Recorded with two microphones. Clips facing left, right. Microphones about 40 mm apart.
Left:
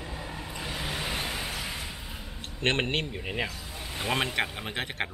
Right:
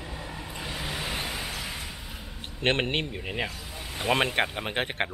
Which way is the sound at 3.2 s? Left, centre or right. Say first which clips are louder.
Even; centre.